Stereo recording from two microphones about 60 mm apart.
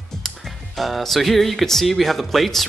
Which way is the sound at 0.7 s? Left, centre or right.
Centre.